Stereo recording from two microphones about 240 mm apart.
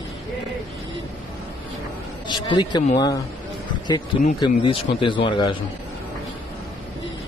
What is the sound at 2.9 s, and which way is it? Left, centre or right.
Speech, centre.